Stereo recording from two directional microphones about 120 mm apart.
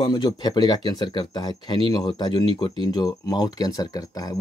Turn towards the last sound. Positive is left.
turn(degrees=30)  # may be behind; listen again after turning